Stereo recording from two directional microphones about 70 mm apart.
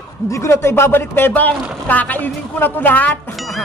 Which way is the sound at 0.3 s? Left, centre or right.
Left.